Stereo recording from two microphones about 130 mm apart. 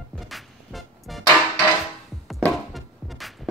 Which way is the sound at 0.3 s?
Centre (ahead or behind).